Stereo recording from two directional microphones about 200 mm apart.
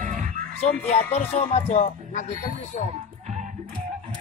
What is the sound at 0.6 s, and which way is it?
Speech, 30° left (ahead or behind).